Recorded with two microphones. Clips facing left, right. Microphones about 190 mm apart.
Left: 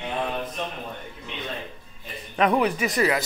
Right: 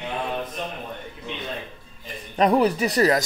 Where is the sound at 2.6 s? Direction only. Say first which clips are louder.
Right 3 dB; 35° right (ahead or behind).